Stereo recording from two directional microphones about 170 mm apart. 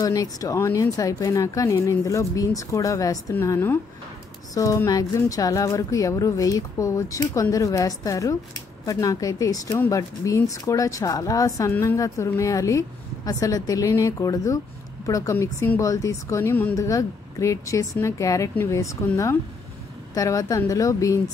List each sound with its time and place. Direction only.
0.0 s a woman's voice: 20° left (ahead or behind)